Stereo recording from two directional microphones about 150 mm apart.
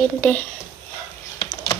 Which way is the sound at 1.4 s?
25° left (ahead or behind).